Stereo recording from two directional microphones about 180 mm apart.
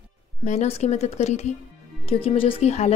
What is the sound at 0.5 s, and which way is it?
Speech, 35° left (ahead or behind).